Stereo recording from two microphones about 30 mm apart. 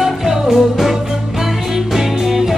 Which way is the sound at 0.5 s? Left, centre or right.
Centre.